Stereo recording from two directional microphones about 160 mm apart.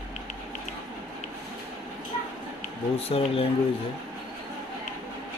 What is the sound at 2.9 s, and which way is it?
Speech, 40° left (ahead or behind).